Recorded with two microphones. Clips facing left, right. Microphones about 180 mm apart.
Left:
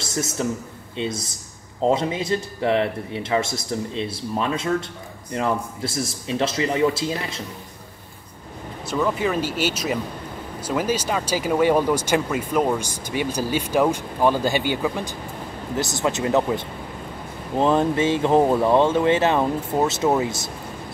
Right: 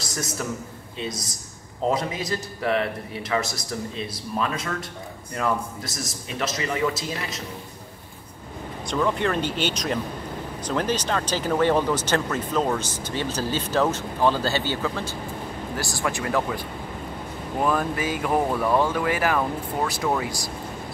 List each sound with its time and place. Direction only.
0.0 s a man's voice: 25° left (ahead or behind)
8.8 s a man's voice: 5° left (ahead or behind); by 20.5 s 25° left (ahead or behind)